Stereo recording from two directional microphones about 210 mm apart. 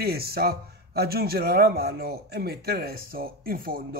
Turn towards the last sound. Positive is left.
turn(degrees=-45)  # may be behind; listen again after turning